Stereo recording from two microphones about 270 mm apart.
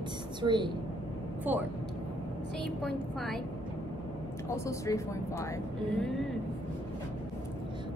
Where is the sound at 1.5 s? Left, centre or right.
Centre.